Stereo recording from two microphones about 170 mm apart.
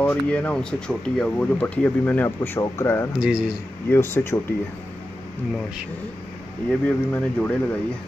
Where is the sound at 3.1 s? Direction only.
5° right (ahead or behind).